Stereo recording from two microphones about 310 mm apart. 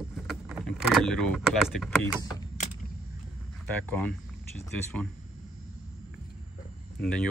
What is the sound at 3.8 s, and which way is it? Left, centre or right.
Speech, centre.